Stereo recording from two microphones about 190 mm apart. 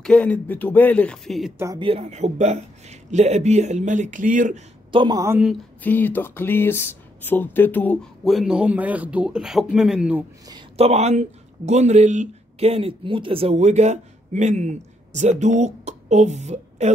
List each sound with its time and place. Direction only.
0.0 s speech: 5° left (ahead or behind)
1.8 s a man's voice: 30° right (ahead or behind)
4.9 s speech: 20° right (ahead or behind)
5.8 s speech: 10° left (ahead or behind)
10.5 s speech: 35° right (ahead or behind)